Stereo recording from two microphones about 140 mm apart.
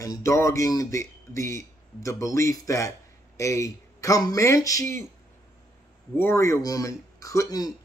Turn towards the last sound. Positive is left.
turn(degrees=25)  # may be behind; listen again after turning